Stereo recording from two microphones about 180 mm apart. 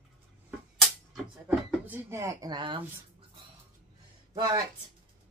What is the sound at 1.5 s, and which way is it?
Speech, 10° right (ahead or behind).